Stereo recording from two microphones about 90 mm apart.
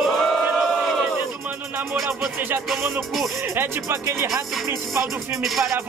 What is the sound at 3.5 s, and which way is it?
Speech, 25° right (ahead or behind).